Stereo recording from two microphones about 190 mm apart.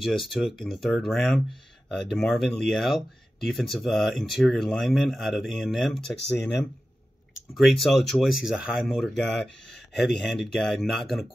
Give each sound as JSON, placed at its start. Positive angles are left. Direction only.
{"t": 0.0, "sound": "speech", "side_deg": 0}
{"t": 7.5, "sound": "speech", "side_deg": 0}